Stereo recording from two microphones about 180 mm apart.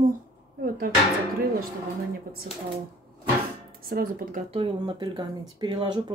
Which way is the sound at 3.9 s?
55° right (ahead or behind).